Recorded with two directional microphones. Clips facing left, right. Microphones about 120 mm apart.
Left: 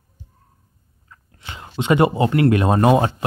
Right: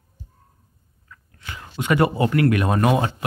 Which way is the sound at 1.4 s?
25° left (ahead or behind).